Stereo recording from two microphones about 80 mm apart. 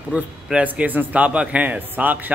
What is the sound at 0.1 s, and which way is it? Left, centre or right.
A man's voice, centre.